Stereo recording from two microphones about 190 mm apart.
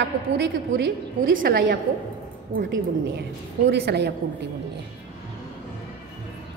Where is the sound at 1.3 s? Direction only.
50° right (ahead or behind).